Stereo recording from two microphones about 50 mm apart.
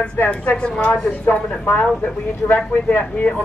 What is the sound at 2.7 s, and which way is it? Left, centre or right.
Speech, left.